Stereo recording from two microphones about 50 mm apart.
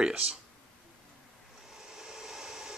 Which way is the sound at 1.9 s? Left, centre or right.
Centre.